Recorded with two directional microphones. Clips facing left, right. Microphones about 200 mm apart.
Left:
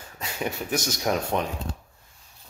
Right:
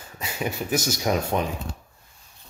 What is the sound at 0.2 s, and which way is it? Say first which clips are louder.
Speech: right 1 dB; 5° right (ahead or behind).